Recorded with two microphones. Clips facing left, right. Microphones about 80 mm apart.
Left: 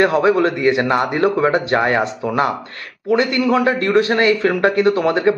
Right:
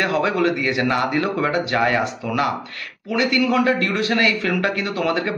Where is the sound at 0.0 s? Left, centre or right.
Left.